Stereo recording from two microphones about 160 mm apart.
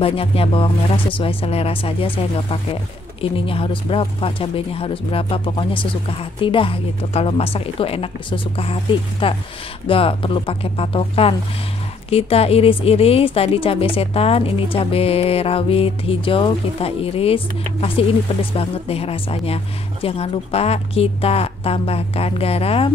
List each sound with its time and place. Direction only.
0.0 s speech: 35° left (ahead or behind)